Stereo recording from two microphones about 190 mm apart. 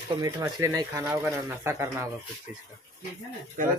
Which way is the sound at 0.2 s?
20° right (ahead or behind).